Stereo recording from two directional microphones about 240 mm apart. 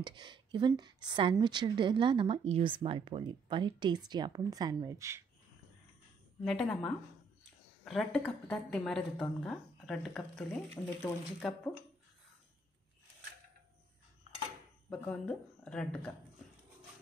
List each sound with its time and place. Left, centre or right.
0.0 s a woman's voice: centre
6.4 s a woman's voice: centre
14.9 s a woman's voice: centre